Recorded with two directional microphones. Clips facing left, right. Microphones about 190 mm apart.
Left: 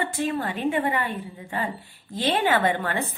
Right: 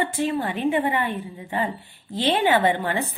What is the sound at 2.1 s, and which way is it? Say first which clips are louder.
Speech: right 2 dB; 20° right (ahead or behind).